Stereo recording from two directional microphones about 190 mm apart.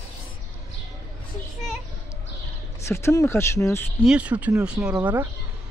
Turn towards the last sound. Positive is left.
turn(degrees=-5)  # may be behind; listen again after turning